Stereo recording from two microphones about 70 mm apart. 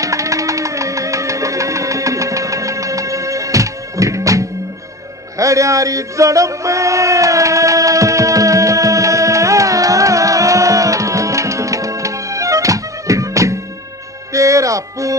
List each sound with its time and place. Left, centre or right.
0.0 s music: right
5.4 s a sound: right
14.3 s music: right